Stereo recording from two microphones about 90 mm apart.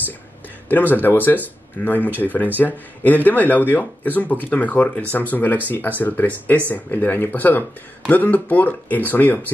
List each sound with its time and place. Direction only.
0.7 s speech: 20° left (ahead or behind)